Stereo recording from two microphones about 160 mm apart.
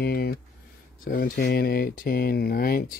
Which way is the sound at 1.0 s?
60° left (ahead or behind).